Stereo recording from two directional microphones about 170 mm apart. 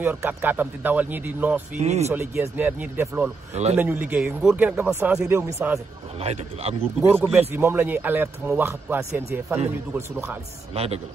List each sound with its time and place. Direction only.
0.0 s speech: 10° right (ahead or behind)
1.8 s a man's voice: 40° right (ahead or behind)
2.0 s speech: 15° right (ahead or behind)
6.2 s a man's voice: 35° right (ahead or behind)
7.0 s speech: 15° right (ahead or behind)
10.7 s a man's voice: 35° right (ahead or behind)